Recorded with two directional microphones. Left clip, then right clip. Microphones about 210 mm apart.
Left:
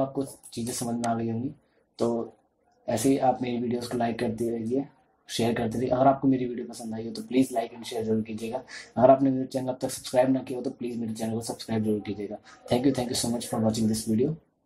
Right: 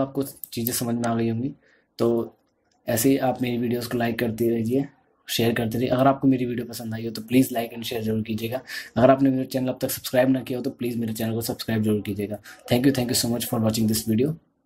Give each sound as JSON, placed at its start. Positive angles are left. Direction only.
{"t": 0.1, "sound": "speech", "side_deg": -30}
{"t": 2.8, "sound": "speech", "side_deg": -30}